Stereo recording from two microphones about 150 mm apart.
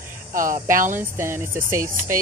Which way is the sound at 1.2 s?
15° right (ahead or behind).